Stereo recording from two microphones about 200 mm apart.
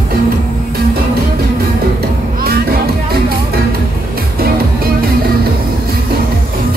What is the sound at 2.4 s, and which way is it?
Music, 50° right (ahead or behind).